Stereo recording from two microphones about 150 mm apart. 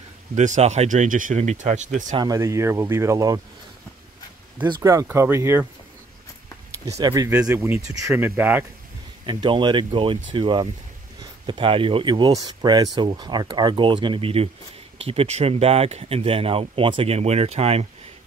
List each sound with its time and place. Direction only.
0.3 s speech: 55° right (ahead or behind)
2.1 s speech: 25° right (ahead or behind)
4.6 s speech: 20° right (ahead or behind)
6.9 s speech: 25° right (ahead or behind)
9.2 s speech: 30° right (ahead or behind)